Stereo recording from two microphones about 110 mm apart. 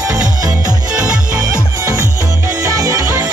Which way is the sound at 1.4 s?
30° right (ahead or behind).